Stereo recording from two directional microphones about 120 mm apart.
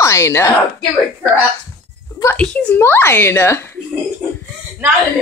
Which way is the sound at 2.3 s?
10° left (ahead or behind).